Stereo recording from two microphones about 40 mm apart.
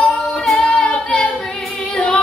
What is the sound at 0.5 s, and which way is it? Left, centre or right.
Female singing, left.